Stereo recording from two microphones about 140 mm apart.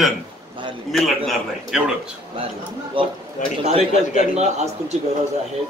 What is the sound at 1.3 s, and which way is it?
Speech, 5° right (ahead or behind).